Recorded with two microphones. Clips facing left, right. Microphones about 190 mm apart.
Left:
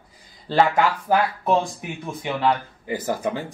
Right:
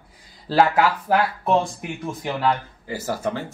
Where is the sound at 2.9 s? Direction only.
15° left (ahead or behind).